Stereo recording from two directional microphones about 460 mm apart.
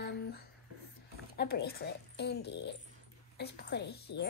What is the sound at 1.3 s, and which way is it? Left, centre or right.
Speech, left.